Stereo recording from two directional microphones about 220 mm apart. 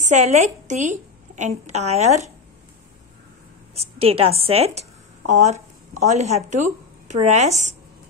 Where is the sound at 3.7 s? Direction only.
25° right (ahead or behind).